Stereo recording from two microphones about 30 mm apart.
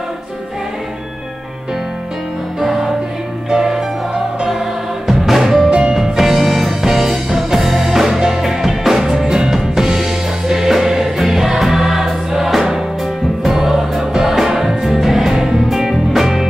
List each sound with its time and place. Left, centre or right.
3.4 s music: centre
5.7 s music: right
6.1 s music: centre